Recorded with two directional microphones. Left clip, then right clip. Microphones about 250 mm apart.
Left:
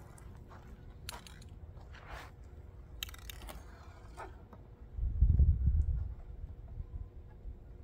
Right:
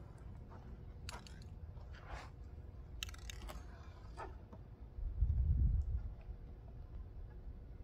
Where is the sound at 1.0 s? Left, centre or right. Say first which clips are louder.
Left 4 dB; centre.